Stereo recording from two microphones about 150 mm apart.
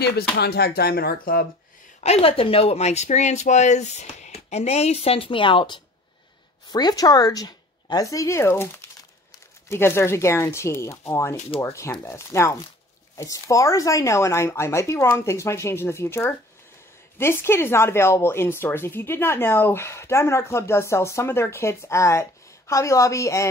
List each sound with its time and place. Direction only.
0.0 s speech: 90° left
2.0 s speech: 40° left (ahead or behind); by 23.5 s 20° left (ahead or behind)